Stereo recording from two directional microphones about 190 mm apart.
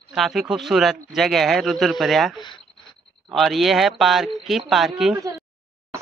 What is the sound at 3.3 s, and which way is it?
Speech, centre (ahead or behind).